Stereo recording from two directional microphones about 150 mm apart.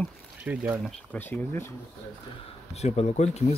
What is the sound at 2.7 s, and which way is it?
Speech, 45° left (ahead or behind).